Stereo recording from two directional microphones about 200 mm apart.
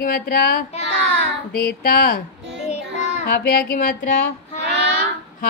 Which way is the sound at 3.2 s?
50° left (ahead or behind).